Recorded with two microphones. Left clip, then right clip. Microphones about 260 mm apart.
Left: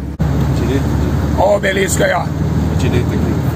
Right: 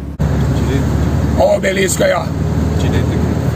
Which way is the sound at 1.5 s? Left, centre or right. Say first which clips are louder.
Left 1 dB; centre.